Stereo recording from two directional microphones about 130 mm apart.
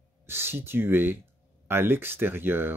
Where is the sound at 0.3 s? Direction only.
20° right (ahead or behind).